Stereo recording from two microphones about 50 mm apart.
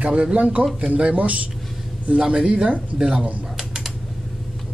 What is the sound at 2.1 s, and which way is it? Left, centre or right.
Speech, centre.